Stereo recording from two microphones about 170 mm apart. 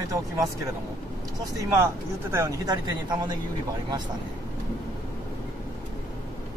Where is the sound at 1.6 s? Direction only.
20° right (ahead or behind).